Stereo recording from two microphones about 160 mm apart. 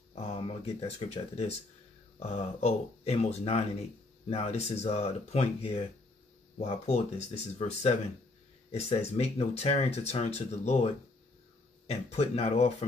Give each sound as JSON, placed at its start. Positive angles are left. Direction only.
{"t": 0.1, "sound": "speech", "side_deg": 40}
{"t": 11.9, "sound": "speech", "side_deg": 40}